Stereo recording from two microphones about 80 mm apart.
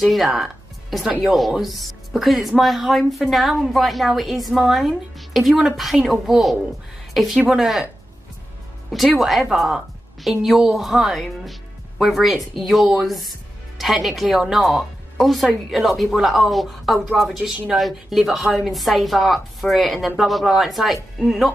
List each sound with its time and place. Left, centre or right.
0.0 s speech: centre
8.9 s speech: centre